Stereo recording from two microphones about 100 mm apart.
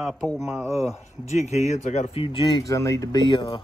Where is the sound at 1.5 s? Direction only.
90° left; by 2.5 s 55° left (ahead or behind).